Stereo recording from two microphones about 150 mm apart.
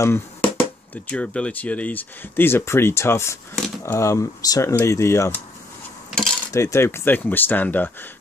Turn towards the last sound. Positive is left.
turn(degrees=10)  # may be behind; listen again after turning